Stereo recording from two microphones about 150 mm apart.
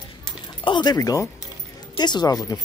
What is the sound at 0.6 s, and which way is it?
Speech, 30° left (ahead or behind).